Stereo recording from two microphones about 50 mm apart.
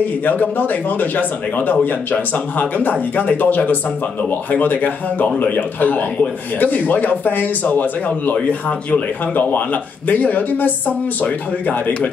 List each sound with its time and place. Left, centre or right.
0.2 s speech: left